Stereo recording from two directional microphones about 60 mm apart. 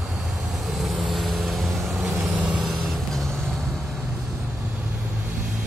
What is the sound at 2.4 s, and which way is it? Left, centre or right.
Vehicle, right.